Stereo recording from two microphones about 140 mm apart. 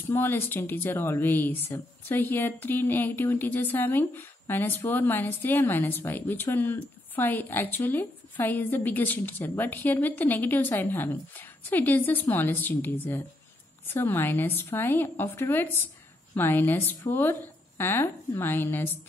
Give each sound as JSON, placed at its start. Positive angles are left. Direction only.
{"t": 0.0, "sound": "speech", "side_deg": 15}